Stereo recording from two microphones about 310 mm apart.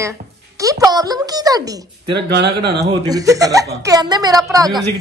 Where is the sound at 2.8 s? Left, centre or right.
Centre.